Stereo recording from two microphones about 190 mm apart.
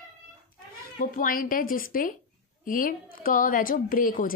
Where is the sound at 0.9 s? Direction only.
50° left (ahead or behind).